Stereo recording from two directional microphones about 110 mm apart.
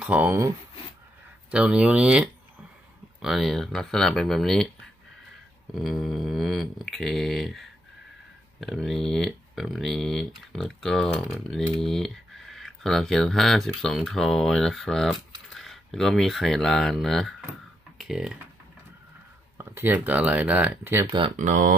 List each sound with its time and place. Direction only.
0.0 s speech: 15° right (ahead or behind)
1.5 s speech: 10° right (ahead or behind)
5.8 s speech: centre (ahead or behind)
19.6 s speech: 20° right (ahead or behind)
21.1 s speech: 45° right (ahead or behind)